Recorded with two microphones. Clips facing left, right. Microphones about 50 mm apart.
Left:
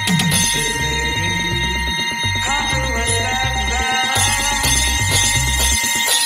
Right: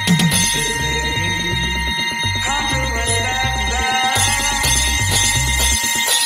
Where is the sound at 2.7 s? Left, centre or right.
Left.